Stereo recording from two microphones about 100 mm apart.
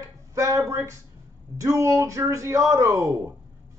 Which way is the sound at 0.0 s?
30° right (ahead or behind).